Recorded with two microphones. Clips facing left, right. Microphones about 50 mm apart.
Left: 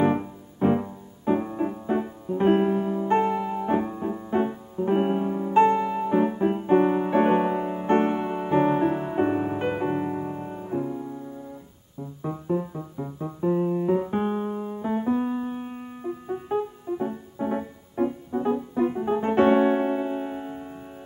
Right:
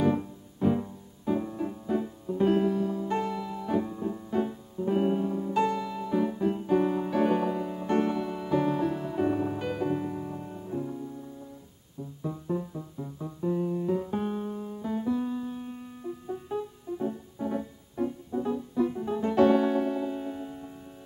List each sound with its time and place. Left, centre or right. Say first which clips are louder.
0.0 s music: left 4 dB; left